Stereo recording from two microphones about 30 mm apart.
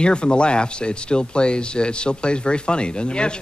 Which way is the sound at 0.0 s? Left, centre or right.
Left.